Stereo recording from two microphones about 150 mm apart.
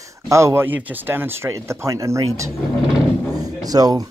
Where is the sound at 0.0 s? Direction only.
20° right (ahead or behind).